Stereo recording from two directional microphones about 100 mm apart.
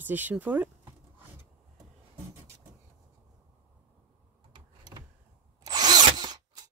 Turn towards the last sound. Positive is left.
turn(degrees=-45)  # may be behind; listen again after turning